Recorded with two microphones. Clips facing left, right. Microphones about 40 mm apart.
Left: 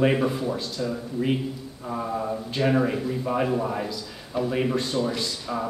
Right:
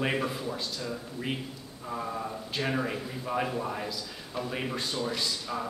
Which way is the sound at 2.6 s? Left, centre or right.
Centre.